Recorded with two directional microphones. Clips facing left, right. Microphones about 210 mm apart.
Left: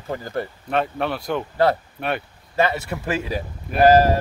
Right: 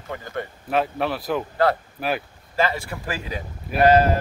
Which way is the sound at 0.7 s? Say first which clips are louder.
Even; centre (ahead or behind).